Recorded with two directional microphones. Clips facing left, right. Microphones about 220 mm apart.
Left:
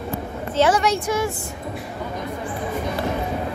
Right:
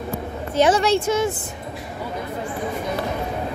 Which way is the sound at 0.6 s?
25° right (ahead or behind).